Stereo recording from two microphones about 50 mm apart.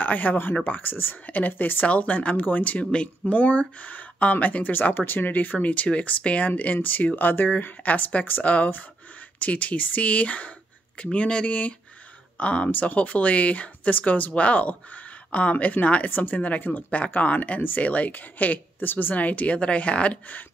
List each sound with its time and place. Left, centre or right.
0.0 s speech: left
1.9 s speech: left